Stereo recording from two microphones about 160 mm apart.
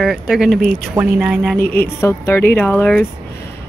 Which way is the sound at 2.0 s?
15° left (ahead or behind).